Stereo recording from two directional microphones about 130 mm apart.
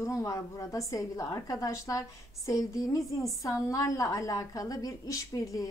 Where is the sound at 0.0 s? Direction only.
25° left (ahead or behind).